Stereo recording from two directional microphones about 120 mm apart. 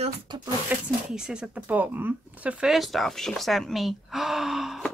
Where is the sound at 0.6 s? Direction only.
5° right (ahead or behind).